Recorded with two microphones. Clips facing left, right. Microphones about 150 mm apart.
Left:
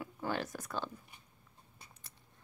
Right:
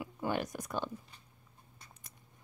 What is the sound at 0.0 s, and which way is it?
Speech, 15° right (ahead or behind).